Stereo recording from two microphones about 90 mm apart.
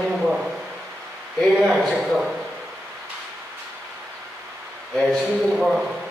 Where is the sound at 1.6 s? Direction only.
5° right (ahead or behind).